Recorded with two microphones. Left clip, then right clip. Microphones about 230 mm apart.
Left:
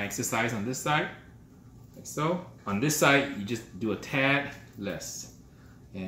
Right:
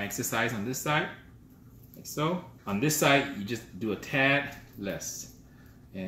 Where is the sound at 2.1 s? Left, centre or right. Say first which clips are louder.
Left 1 dB; centre.